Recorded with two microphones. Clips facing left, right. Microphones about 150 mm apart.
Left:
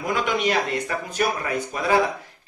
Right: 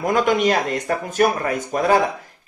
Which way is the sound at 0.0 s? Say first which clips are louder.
Right 6 dB; 45° right (ahead or behind).